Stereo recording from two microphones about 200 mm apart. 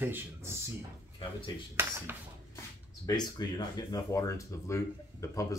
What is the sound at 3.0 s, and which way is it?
Speech, 20° left (ahead or behind).